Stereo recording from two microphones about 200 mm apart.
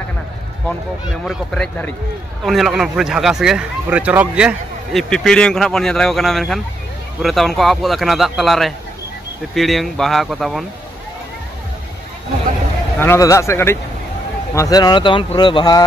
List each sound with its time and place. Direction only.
1.2 s speech: 5° left (ahead or behind)
13.0 s a man's voice: 15° left (ahead or behind)